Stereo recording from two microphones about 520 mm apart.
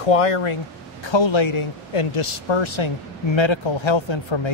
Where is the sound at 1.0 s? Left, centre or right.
Left.